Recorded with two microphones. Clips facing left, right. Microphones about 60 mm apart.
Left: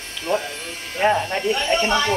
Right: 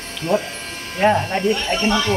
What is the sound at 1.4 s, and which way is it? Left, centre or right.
Speech, centre.